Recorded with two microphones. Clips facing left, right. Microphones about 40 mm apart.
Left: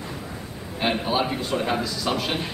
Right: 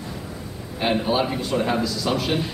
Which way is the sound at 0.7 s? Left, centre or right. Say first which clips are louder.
Right 2 dB; centre.